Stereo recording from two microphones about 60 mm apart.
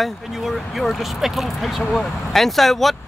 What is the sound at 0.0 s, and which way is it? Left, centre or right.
Speech, centre.